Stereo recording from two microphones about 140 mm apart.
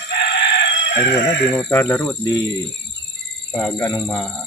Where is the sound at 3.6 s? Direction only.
20° left (ahead or behind).